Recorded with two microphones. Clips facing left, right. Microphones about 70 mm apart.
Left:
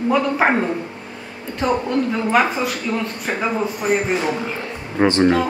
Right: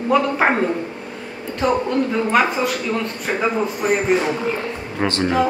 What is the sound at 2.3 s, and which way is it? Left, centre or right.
Speech, centre.